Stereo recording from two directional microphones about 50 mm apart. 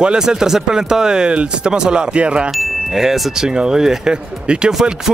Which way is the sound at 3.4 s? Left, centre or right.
Centre.